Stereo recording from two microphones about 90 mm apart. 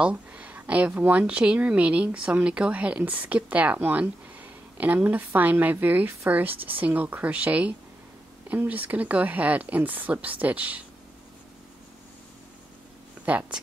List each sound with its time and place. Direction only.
0.0 s speech: 15° right (ahead or behind)
13.2 s speech: 15° right (ahead or behind)